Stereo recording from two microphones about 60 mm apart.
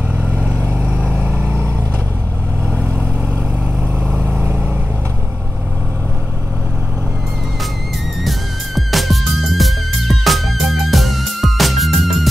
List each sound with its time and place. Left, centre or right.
0.7 s vehicle: centre
4.2 s vehicle: centre
8.2 s music: centre